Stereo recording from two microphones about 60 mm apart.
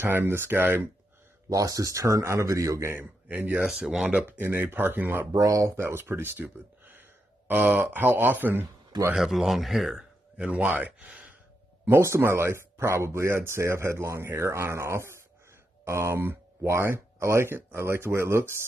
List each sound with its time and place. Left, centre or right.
0.0 s speech: right
1.5 s speech: right
3.3 s speech: right
3.6 s speech: centre
4.4 s speech: right
5.2 s speech: right
5.8 s speech: right
9.1 s speech: centre
10.3 s speech: right
11.8 s speech: right